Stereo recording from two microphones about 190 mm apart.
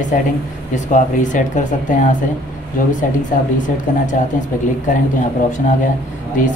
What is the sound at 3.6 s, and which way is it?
Speech, 40° left (ahead or behind).